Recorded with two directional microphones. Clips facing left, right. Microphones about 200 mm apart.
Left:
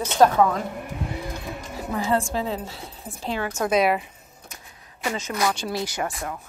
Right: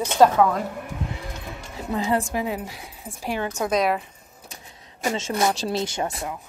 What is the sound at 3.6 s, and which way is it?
Speech, 5° left (ahead or behind).